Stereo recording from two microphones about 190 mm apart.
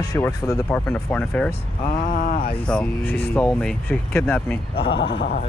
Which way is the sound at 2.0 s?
45° left (ahead or behind).